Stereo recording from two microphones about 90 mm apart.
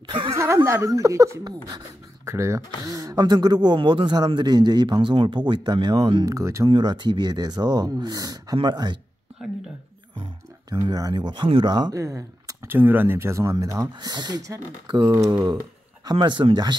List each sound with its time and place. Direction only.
0.0 s a sound: 65° right (ahead or behind)
0.3 s a sound: 35° right (ahead or behind)
0.7 s speech: 40° right (ahead or behind); by 6.2 s 60° right (ahead or behind)
6.2 s speech: 35° right (ahead or behind)
6.7 s speech: 55° right (ahead or behind)
10.7 s speech: 50° right (ahead or behind)
11.9 s speech: 40° right (ahead or behind)
12.6 s speech: 20° right (ahead or behind); by 13.8 s 35° right (ahead or behind)
13.9 s speech: 55° right (ahead or behind)
16.0 s speech: 50° right (ahead or behind)